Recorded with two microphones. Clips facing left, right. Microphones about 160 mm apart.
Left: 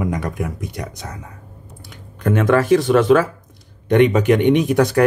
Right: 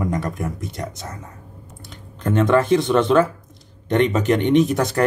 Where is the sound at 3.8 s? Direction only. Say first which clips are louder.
Left 4 dB; 15° left (ahead or behind).